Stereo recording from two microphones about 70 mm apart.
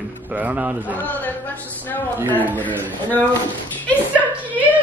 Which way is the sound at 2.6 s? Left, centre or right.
Left.